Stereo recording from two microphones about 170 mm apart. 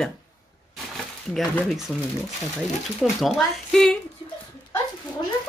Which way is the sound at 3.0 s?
Centre (ahead or behind).